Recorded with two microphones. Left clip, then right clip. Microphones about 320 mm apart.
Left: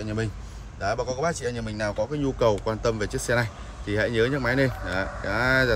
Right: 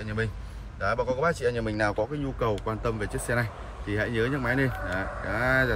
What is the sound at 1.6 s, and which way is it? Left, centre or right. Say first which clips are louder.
Speech: right 2 dB; right.